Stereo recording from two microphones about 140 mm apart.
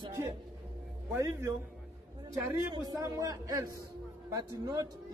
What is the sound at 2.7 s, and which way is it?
A man's voice, 25° right (ahead or behind).